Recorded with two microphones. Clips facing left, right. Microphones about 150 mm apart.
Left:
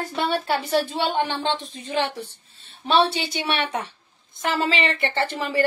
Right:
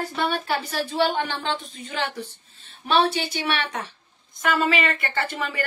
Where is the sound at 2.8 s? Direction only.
25° left (ahead or behind).